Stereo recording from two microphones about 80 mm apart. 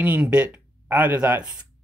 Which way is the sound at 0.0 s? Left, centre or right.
Centre.